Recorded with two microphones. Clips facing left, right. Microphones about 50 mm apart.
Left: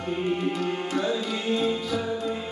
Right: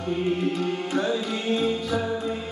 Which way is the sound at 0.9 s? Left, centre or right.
Centre.